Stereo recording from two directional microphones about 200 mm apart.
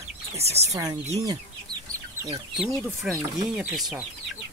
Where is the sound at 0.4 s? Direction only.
30° right (ahead or behind).